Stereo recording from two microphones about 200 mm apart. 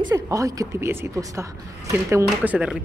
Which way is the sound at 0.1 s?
15° right (ahead or behind).